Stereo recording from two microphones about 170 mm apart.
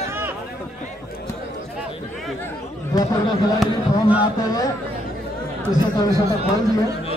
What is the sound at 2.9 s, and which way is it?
Speech, 20° left (ahead or behind).